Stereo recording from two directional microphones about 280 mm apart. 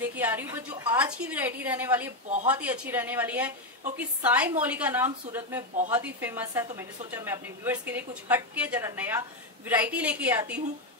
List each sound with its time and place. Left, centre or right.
0.0 s a woman's voice: centre